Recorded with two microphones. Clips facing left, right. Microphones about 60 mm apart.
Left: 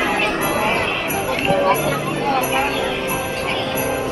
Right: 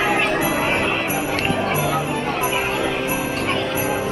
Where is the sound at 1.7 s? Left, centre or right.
Left.